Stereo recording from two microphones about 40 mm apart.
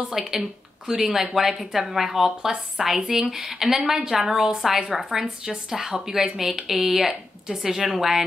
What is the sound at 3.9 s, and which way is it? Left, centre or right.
A woman's voice, centre.